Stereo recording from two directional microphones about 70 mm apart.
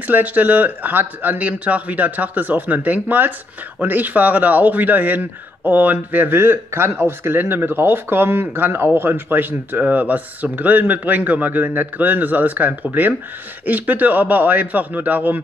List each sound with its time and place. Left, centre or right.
0.0 s speech: right